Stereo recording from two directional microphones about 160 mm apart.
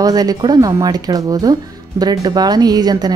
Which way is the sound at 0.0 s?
25° right (ahead or behind).